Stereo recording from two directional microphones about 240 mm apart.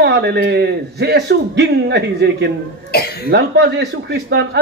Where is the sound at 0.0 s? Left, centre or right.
Right.